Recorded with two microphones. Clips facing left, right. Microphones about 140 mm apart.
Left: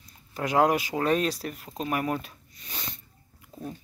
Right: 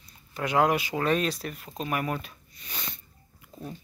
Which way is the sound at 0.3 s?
40° left (ahead or behind).